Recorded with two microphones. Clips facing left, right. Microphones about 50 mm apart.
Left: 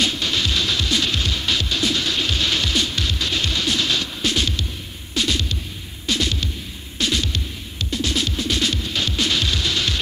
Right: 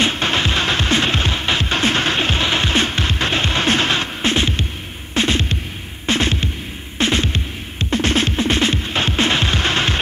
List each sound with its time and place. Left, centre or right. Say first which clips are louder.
0.0 s music: right 4 dB; right